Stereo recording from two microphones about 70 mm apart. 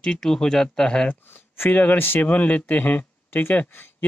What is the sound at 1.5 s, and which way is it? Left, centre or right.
Speech, left.